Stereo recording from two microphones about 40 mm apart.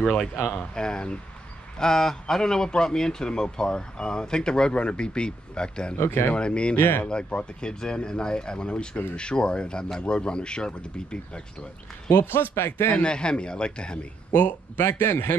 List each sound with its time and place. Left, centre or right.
0.5 s speech: left
5.9 s speech: left
6.3 s speech: left
6.8 s speech: left
7.1 s speech: left
12.1 s speech: left
12.9 s speech: left
14.3 s speech: left
14.8 s speech: left